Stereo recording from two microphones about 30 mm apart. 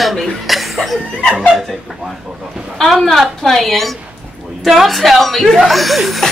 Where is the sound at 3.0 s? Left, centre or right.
Centre.